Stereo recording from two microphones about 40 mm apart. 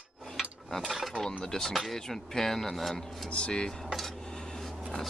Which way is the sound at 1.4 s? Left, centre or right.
Centre.